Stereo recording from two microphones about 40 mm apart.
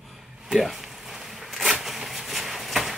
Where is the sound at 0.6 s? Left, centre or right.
Centre.